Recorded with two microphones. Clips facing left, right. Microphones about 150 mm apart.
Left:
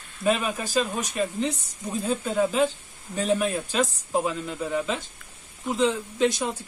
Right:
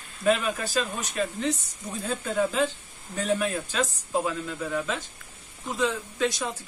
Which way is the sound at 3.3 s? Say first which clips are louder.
Left 3 dB; 20° left (ahead or behind).